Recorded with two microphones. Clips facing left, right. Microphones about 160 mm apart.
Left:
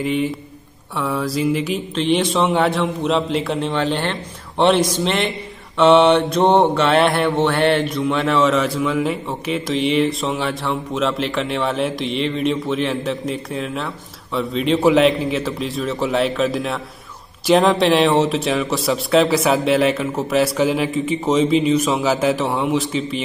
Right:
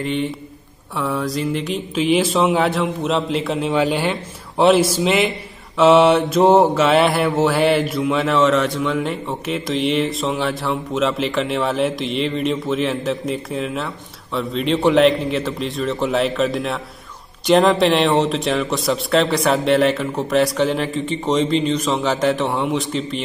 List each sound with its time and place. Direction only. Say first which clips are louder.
0.0 s mantra: left 2 dB; 5° left (ahead or behind)